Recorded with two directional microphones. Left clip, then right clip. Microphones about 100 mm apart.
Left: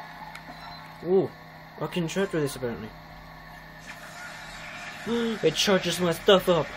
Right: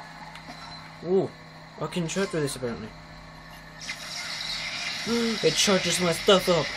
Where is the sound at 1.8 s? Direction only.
Centre (ahead or behind).